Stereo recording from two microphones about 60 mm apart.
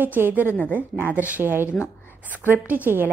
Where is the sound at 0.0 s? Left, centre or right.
Right.